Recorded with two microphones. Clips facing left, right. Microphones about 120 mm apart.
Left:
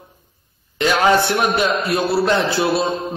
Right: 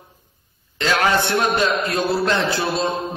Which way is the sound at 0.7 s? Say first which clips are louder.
Left 4 dB; 15° left (ahead or behind).